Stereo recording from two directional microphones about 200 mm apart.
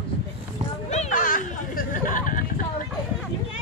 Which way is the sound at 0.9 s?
35° left (ahead or behind).